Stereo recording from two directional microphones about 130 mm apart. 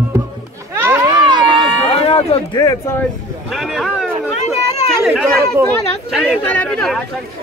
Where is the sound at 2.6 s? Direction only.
30° left (ahead or behind).